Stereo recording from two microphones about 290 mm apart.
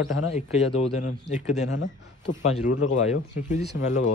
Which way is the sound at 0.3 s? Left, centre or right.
Left.